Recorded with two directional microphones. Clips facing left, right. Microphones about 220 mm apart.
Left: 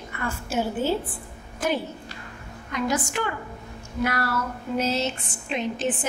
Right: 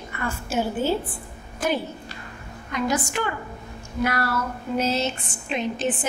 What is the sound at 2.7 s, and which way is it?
A woman's voice, 20° right (ahead or behind).